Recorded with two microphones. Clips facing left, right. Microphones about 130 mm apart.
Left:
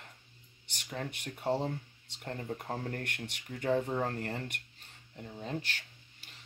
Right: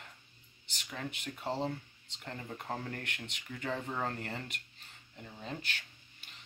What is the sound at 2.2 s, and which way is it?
Speech, 40° left (ahead or behind).